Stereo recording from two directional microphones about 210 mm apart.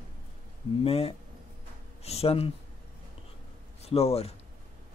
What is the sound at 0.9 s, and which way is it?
Speech, 30° left (ahead or behind).